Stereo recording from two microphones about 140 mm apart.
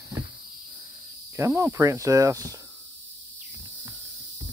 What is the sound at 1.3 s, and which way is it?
Speech, 20° right (ahead or behind).